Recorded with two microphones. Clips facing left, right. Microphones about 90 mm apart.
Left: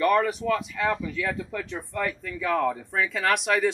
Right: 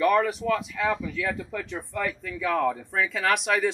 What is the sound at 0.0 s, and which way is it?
Speech, centre (ahead or behind).